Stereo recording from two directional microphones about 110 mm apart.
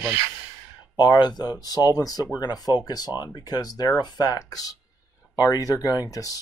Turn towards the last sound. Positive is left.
turn(degrees=35)  # may be behind; listen again after turning